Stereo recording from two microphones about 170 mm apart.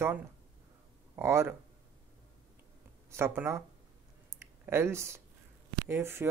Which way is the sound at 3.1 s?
15° right (ahead or behind).